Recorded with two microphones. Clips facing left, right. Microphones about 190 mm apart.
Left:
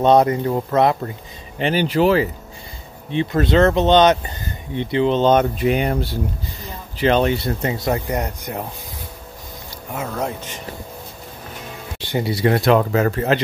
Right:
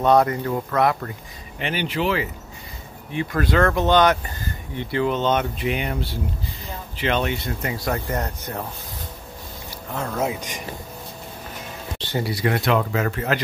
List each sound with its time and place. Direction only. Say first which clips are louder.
0.0 s speech: left 3 dB; 20° left (ahead or behind)
1.6 s speech: left 7 dB; 35° left (ahead or behind)
3.1 s speech: left 5 dB; 25° left (ahead or behind); by 5.9 s 40° left (ahead or behind)
7.0 s speech: left 7 dB; 35° left (ahead or behind); by 8.6 s 15° left (ahead or behind)
9.9 s speech: even; centre (ahead or behind)
12.0 s a sound: left 3 dB; 15° left (ahead or behind)
12.3 s speech: left 6 dB; 30° left (ahead or behind)